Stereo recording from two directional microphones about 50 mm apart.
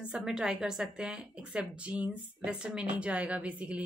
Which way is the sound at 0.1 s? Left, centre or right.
Centre.